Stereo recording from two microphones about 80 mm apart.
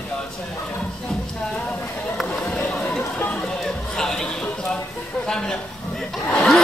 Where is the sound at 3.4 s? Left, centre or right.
Centre.